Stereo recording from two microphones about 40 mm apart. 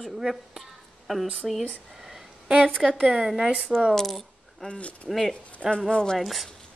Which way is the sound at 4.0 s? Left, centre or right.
Centre.